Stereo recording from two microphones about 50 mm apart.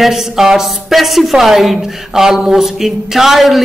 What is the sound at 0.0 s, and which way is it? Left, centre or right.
A man's voice, centre.